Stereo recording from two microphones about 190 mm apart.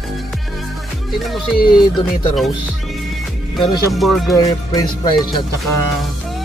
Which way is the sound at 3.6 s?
20° left (ahead or behind).